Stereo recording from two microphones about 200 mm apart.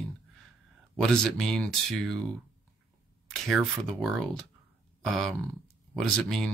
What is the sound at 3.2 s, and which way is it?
Speech, centre (ahead or behind).